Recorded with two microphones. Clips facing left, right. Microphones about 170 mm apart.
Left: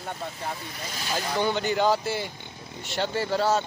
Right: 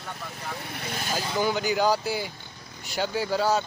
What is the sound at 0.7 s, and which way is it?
Speech, 60° right (ahead or behind).